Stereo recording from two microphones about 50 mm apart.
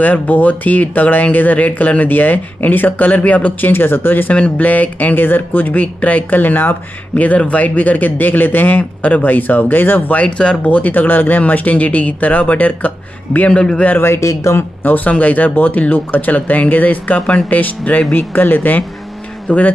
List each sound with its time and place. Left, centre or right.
0.0 s speech: left
3.7 s speech: left
4.3 s speech: left
7.2 s speech: left
10.1 s speech: left
10.7 s speech: left
13.5 s speech: left
13.9 s speech: left
14.2 s speech: left
14.8 s speech: left